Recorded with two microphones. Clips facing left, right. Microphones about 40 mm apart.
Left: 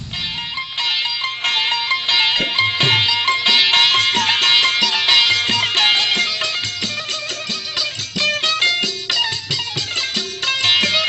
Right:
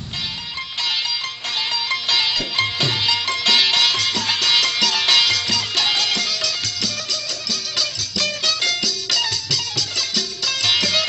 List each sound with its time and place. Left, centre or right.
1.4 s music: left
3.2 s music: left
3.7 s music: left
4.7 s music: centre
5.4 s music: left
8.3 s music: left